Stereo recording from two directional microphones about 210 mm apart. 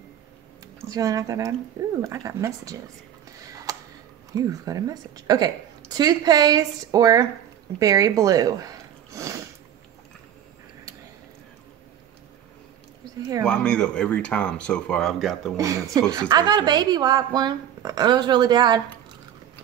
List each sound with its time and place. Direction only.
0.8 s a woman's voice: 15° right (ahead or behind)
3.4 s a sound: 15° right (ahead or behind)
4.3 s a woman's voice: 15° right (ahead or behind)
13.5 s speech: 5° left (ahead or behind)
15.5 s a woman's voice: 15° right (ahead or behind)